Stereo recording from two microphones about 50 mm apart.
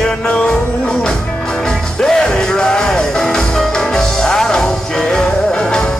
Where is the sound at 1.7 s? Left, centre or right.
Centre.